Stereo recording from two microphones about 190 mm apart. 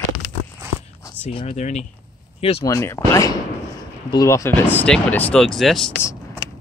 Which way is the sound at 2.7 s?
15° left (ahead or behind).